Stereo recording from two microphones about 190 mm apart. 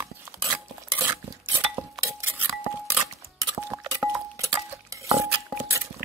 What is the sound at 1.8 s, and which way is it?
Cutlery, 10° right (ahead or behind).